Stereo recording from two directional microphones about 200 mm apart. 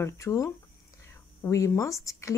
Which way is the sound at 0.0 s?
15° left (ahead or behind).